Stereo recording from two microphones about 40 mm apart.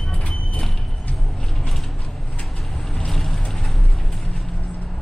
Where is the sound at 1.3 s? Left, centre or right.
Centre.